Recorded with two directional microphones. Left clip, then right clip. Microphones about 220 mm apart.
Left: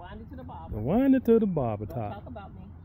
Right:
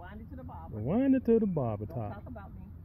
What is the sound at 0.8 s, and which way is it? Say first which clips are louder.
Speech: left 4 dB; 10° left (ahead or behind).